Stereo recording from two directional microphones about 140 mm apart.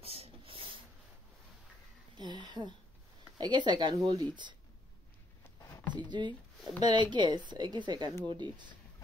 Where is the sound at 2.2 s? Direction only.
30° right (ahead or behind).